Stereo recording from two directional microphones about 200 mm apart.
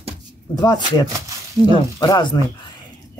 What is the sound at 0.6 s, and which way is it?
Speech, 20° left (ahead or behind).